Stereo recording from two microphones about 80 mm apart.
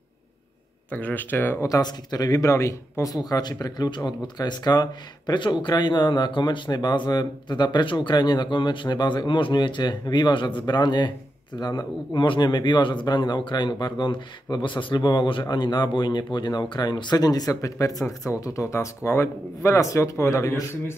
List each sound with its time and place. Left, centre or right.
0.9 s speech: left
1.8 s speech: left
10.6 s speech: left
15.4 s speech: left